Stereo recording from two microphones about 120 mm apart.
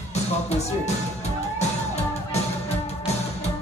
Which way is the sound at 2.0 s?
65° left (ahead or behind).